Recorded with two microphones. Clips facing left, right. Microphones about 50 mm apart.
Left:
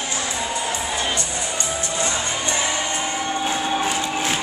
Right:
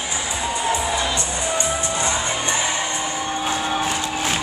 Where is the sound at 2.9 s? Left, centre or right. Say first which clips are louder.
Left 1 dB; left.